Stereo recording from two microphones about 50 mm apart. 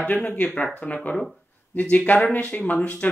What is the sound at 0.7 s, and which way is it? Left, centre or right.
Speech, left.